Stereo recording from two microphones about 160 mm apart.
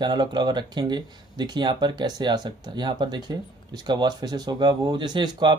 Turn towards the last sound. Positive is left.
turn(degrees=-30)  # may be behind; listen again after turning